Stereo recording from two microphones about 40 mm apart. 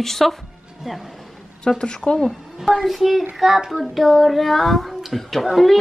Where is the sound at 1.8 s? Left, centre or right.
Left.